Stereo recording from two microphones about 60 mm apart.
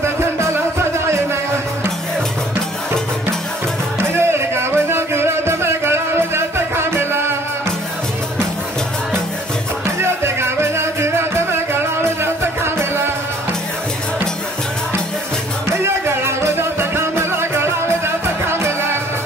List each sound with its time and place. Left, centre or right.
0.0 s music: right
4.0 s music: right
9.9 s music: right
15.7 s music: right